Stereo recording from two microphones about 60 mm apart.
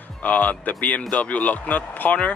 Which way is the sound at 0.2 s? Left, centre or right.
Left.